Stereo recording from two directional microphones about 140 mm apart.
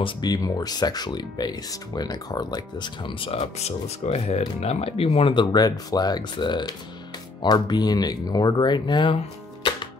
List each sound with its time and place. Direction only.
0.0 s speech: 30° left (ahead or behind)